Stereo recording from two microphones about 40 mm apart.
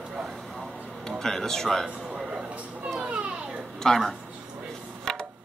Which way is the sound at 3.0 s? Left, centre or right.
Right.